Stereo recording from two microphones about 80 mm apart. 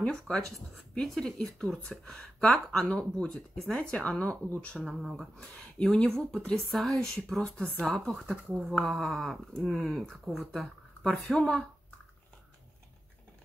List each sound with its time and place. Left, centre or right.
0.3 s speech: centre
4.8 s speech: centre